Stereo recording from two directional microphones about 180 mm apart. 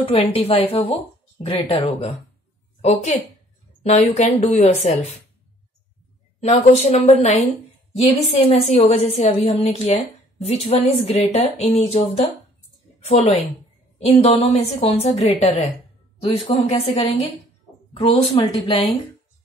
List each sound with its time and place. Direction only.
0.0 s a woman's voice: 30° left (ahead or behind)
6.4 s a woman's voice: 35° left (ahead or behind)